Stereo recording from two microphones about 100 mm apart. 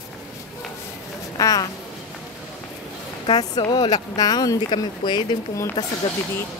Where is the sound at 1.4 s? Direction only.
35° left (ahead or behind).